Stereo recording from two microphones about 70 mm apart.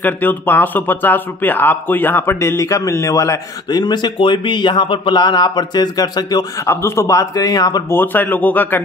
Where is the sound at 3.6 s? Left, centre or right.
Left.